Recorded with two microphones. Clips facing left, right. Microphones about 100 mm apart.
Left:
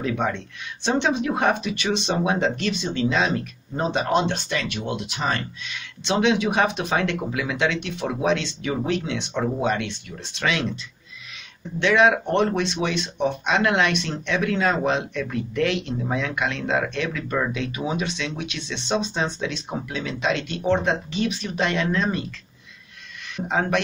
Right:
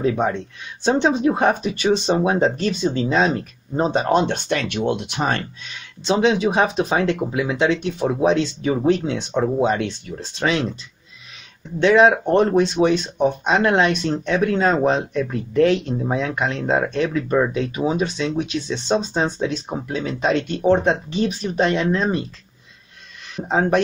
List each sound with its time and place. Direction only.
0.0 s speech: 35° right (ahead or behind)
4.1 s speech: 50° right (ahead or behind)
5.7 s speech: 35° right (ahead or behind)
9.4 s speech: 25° right (ahead or behind)
11.8 s speech: 35° right (ahead or behind)
23.3 s speech: 35° right (ahead or behind)